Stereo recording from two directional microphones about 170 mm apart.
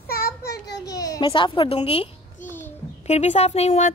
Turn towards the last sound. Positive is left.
turn(degrees=40)  # may be behind; listen again after turning